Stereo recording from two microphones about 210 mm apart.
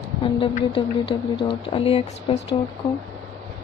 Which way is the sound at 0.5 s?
25° left (ahead or behind).